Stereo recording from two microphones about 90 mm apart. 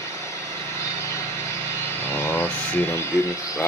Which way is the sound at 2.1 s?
30° left (ahead or behind).